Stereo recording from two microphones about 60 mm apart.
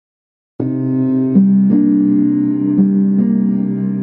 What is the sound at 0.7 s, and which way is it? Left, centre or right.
Music, right.